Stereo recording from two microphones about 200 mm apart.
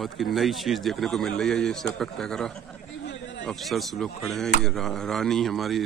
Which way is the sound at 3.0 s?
65° left (ahead or behind).